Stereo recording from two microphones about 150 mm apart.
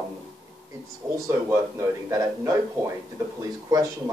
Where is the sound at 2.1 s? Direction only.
20° right (ahead or behind).